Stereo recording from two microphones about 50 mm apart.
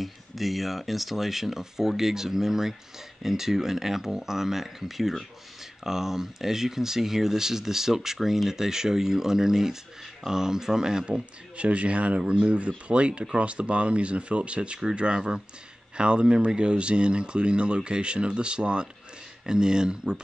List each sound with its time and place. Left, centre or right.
0.0 s speech: centre